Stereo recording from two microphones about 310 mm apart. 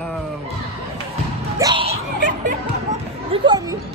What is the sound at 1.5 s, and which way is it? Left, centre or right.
Music, centre.